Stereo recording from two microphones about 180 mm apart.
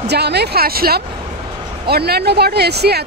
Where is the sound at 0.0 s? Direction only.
65° right (ahead or behind).